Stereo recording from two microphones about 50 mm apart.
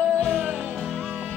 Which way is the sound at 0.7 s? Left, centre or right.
Centre.